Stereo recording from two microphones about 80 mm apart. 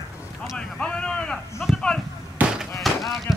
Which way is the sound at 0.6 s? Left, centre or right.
Centre.